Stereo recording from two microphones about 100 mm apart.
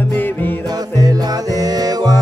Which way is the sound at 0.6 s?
40° right (ahead or behind).